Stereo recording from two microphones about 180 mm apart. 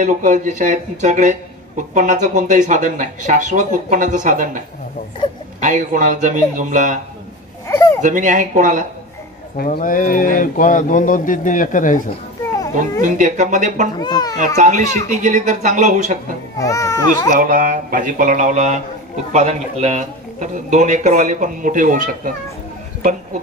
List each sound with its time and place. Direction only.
0.0 s speech: 45° right (ahead or behind)
7.6 s a sound: 15° left (ahead or behind)
8.0 s speech: 45° right (ahead or behind)
9.6 s speech: 55° left (ahead or behind)
13.0 s speech: 45° right (ahead or behind)
13.9 s a child's voice: 20° left (ahead or behind)
14.4 s speech: 45° right (ahead or behind)
16.5 s speech: 20° left (ahead or behind)
17.3 s speech: 50° right (ahead or behind)